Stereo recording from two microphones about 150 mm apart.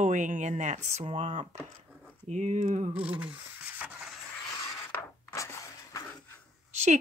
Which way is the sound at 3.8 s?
5° right (ahead or behind).